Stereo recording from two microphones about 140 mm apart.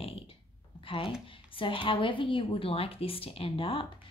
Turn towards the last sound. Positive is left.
turn(degrees=40)  # may be behind; listen again after turning